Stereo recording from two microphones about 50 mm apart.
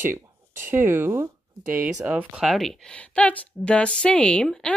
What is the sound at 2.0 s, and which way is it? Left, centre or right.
Speech, right.